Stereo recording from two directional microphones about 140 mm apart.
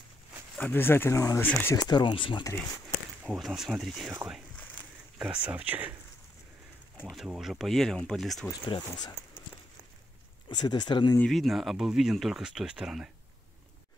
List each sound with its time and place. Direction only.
0.6 s speech: 15° left (ahead or behind)
1.8 s speech: 30° left (ahead or behind)
3.3 s speech: centre (ahead or behind)
5.2 s speech: 10° right (ahead or behind)
7.1 s speech: 5° right (ahead or behind)
8.6 s speech: 35° left (ahead or behind)
10.5 s speech: 30° left (ahead or behind)
11.1 s speech: centre (ahead or behind)